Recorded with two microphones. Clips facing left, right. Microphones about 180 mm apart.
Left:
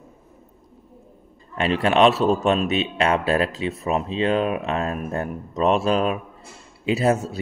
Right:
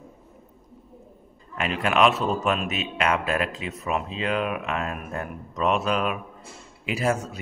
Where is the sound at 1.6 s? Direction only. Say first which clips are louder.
Left 4 dB; 30° left (ahead or behind).